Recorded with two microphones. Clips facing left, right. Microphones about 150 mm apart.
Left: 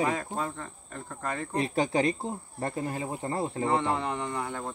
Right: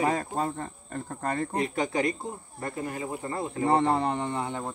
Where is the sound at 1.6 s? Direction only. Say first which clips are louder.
Left 4 dB; 30° left (ahead or behind).